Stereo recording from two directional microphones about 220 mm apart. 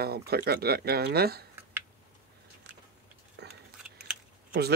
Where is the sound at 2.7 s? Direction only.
50° right (ahead or behind).